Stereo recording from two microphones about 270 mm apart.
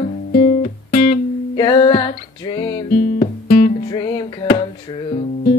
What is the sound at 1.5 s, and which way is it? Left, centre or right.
Music, centre.